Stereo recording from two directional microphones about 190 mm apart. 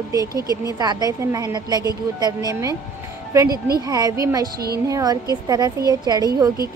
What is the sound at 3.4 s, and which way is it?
Speech, 50° right (ahead or behind).